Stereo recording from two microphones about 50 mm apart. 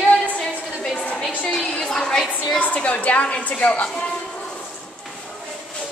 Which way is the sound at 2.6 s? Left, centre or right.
Left.